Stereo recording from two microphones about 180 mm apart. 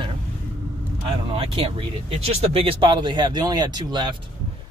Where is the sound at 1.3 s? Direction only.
30° right (ahead or behind).